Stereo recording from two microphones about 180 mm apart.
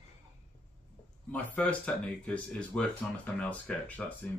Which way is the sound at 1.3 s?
5° left (ahead or behind).